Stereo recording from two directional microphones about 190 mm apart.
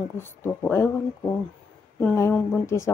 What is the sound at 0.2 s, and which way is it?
A woman's voice, 10° left (ahead or behind).